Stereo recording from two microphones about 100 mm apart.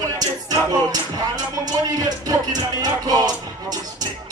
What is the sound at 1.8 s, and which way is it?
Speech, 40° right (ahead or behind).